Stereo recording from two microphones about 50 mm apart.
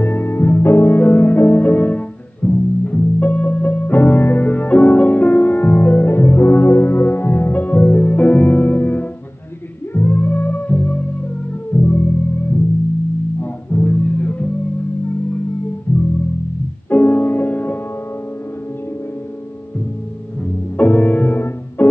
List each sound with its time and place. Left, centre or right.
0.0 s music: left
5.8 s music: left
11.7 s music: left
13.4 s music: left
15.9 s music: left
20.7 s music: left